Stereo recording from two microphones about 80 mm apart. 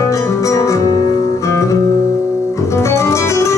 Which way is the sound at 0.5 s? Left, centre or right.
Left.